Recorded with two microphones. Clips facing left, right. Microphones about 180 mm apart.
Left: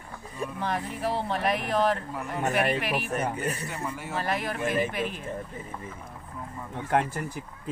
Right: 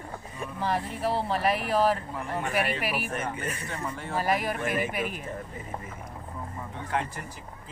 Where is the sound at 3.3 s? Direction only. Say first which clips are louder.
Left 3 dB; 35° left (ahead or behind).